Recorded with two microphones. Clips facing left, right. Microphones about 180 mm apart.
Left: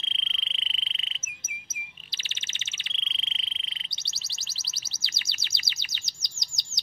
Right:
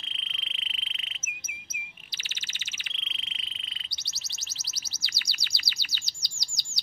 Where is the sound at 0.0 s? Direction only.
25° left (ahead or behind).